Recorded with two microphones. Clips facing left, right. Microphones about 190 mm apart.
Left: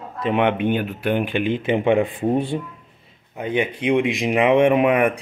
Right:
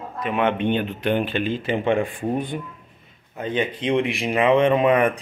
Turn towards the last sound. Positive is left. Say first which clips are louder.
# left 1 dB
turn(degrees=10)  # may be behind; listen again after turning